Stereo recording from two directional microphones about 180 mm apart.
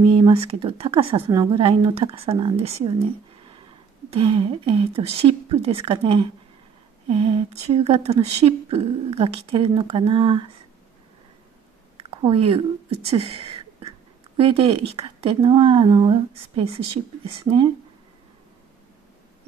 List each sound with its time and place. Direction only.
0.1 s speech: 30° right (ahead or behind)
1.2 s a woman's voice: 20° right (ahead or behind)
1.6 s speech: 35° right (ahead or behind)
4.1 s speech: 30° right (ahead or behind)
12.0 s speech: 30° right (ahead or behind)
13.1 s a sound: 30° right (ahead or behind)
14.3 s a woman's voice: 30° right (ahead or behind)